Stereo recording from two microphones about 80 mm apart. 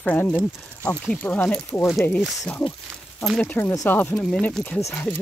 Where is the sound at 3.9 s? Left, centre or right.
Left.